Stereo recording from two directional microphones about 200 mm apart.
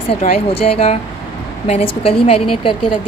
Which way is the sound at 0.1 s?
30° left (ahead or behind).